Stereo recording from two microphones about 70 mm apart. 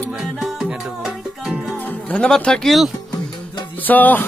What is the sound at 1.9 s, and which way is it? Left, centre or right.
Music, left.